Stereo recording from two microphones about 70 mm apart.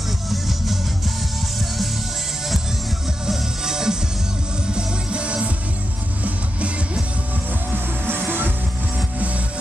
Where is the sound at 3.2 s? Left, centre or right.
Centre.